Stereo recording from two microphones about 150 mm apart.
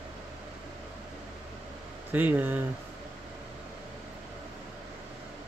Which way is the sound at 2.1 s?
10° right (ahead or behind).